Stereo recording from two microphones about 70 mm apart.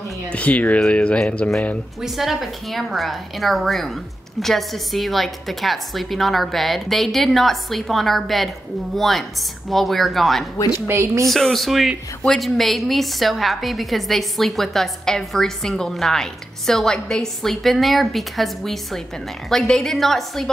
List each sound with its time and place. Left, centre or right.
0.3 s speech: centre
2.0 s a woman's voice: centre
10.9 s speech: right
11.2 s a woman's voice: centre